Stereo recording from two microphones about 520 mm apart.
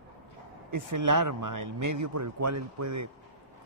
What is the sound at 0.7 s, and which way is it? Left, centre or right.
Speech, right.